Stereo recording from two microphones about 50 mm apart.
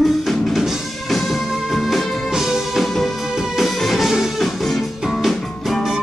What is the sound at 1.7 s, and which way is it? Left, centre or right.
Music, centre.